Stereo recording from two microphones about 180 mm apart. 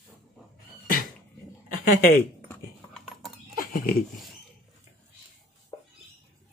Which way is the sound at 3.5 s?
50° left (ahead or behind).